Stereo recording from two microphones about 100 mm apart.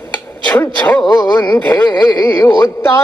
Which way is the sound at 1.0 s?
45° left (ahead or behind).